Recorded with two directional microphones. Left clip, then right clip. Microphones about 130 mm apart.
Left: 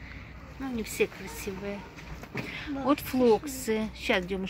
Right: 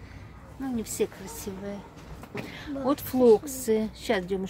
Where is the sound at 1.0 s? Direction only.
30° right (ahead or behind).